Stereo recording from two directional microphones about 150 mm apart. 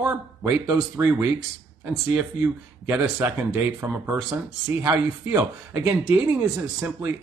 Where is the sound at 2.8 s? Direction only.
15° right (ahead or behind).